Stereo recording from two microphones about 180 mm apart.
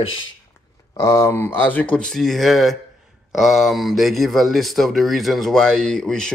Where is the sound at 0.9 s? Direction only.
15° left (ahead or behind).